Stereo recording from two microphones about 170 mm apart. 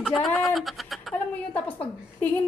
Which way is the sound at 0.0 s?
Centre (ahead or behind).